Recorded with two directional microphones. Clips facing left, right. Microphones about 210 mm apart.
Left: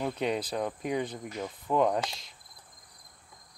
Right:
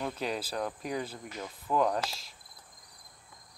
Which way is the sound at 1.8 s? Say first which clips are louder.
Left 2 dB; centre (ahead or behind).